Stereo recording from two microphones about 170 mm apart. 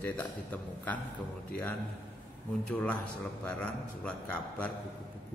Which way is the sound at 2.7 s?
10° left (ahead or behind).